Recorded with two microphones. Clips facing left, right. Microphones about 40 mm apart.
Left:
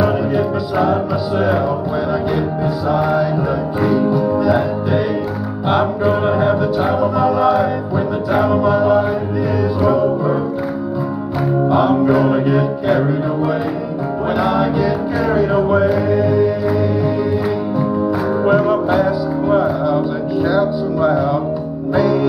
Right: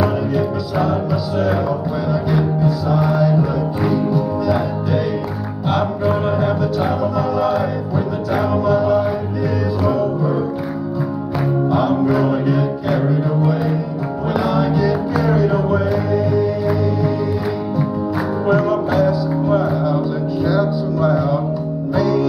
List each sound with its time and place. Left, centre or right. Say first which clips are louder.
0.0 s music: left 2 dB; left
2.3 s music: right 1 dB; centre
11.7 s music: left 4 dB; centre
14.4 s music: left 1 dB; centre
18.4 s music: left 2 dB; centre